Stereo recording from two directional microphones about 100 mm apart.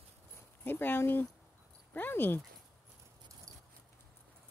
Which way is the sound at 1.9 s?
20° left (ahead or behind).